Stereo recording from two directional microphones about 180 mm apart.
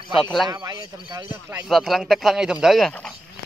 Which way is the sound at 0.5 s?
25° right (ahead or behind).